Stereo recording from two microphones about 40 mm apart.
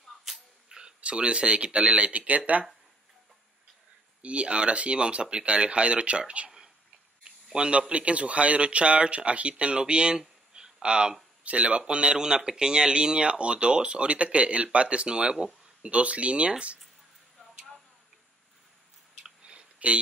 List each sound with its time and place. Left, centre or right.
0.2 s a sound: centre
0.7 s speech: right
4.2 s speech: right
7.5 s speech: right
15.9 s speech: right
19.2 s a sound: right